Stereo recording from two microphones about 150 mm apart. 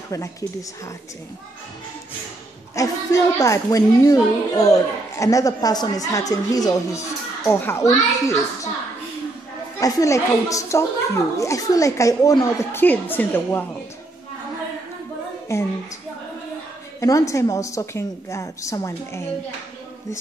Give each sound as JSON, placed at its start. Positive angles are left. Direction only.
{"t": 0.1, "sound": "a woman's voice", "side_deg": 20}
{"t": 2.7, "sound": "a woman's voice", "side_deg": 20}
{"t": 9.8, "sound": "a woman's voice", "side_deg": 25}
{"t": 15.5, "sound": "a woman's voice", "side_deg": 20}
{"t": 17.0, "sound": "a woman's voice", "side_deg": 20}